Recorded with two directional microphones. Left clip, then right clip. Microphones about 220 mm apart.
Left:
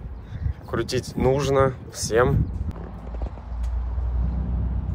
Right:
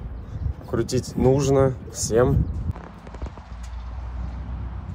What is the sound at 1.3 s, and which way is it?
Speech, 20° right (ahead or behind).